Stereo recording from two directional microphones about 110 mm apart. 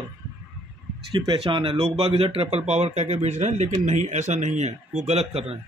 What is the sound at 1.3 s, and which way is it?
Speech, 50° right (ahead or behind).